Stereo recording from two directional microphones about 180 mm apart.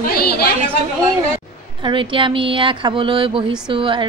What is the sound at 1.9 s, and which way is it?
Speech, 25° right (ahead or behind).